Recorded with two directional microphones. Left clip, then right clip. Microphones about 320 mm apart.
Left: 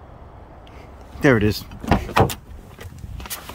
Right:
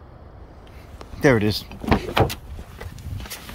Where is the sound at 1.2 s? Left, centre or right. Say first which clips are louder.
Left 1 dB; centre.